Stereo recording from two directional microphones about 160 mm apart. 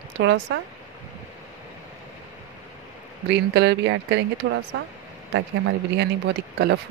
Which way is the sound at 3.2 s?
90° right.